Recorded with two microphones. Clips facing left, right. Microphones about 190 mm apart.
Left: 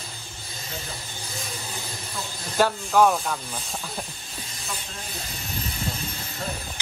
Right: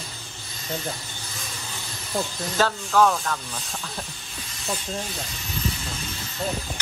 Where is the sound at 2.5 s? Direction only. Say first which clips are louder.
Left 1 dB; 10° left (ahead or behind).